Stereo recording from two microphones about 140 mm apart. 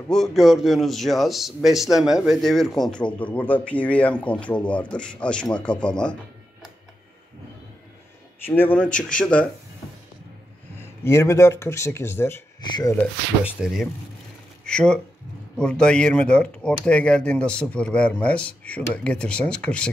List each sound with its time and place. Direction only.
0.1 s a man's voice: centre (ahead or behind)
8.5 s a man's voice: 15° left (ahead or behind)
10.8 s speech: 20° left (ahead or behind)
12.6 s speech: 30° left (ahead or behind)
13.4 s speech: 5° right (ahead or behind)
14.6 s a man's voice: 5° left (ahead or behind)